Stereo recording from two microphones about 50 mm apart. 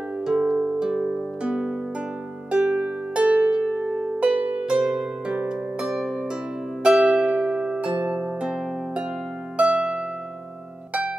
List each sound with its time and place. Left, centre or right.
0.3 s harp: centre
1.4 s music: centre
2.5 s harp: centre
3.5 s music: centre
4.4 s harp: right